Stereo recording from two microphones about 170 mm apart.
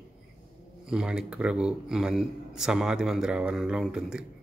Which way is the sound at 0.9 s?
5° right (ahead or behind).